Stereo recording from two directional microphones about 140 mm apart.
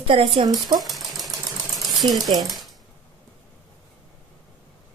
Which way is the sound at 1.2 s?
Centre (ahead or behind).